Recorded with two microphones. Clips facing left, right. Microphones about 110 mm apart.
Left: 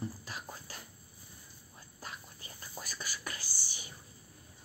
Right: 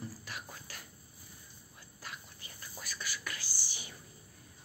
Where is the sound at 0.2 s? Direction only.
30° left (ahead or behind).